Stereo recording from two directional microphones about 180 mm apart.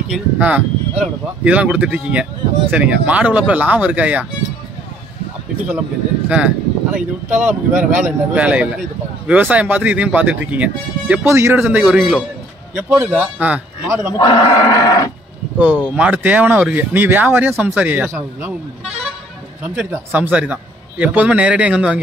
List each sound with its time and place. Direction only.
0.1 s speech: 10° right (ahead or behind)
6.2 s speech: 5° right (ahead or behind)
14.1 s speech: 20° left (ahead or behind)
15.5 s speech: 10° right (ahead or behind)
19.6 s speech: 5° right (ahead or behind)